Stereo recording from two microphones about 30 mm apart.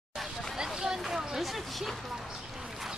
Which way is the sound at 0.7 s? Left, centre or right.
Right.